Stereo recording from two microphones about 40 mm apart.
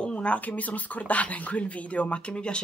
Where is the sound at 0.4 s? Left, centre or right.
Left.